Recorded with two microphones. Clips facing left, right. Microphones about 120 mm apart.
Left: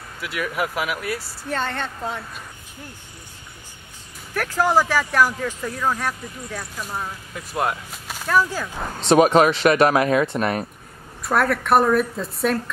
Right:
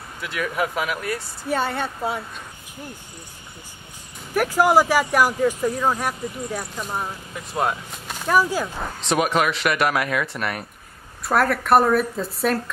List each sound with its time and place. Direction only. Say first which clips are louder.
0.2 s a woman's voice: right 1 dB; 5° left (ahead or behind)
1.5 s speech: right 3 dB; 10° right (ahead or behind)
4.3 s speech: right 3 dB; 15° right (ahead or behind)
7.3 s speech: even; centre (ahead or behind)
8.3 s speech: right 1 dB; 10° right (ahead or behind)
9.1 s speech: left 6 dB; 35° left (ahead or behind)
11.2 s a woman's voice: even; centre (ahead or behind)